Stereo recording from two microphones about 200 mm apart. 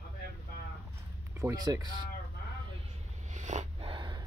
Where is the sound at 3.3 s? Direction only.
35° right (ahead or behind).